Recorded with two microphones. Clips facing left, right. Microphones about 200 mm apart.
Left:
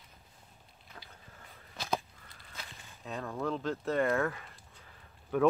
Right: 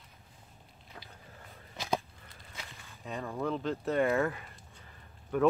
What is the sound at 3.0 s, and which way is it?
Speech, centre (ahead or behind).